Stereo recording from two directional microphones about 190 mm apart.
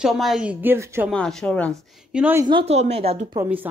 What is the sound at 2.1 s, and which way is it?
Speech, 10° right (ahead or behind).